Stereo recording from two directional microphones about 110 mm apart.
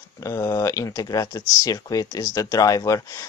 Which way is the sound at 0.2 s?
30° left (ahead or behind).